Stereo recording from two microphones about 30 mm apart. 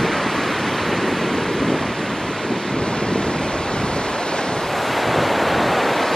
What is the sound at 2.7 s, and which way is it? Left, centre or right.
Waves, left.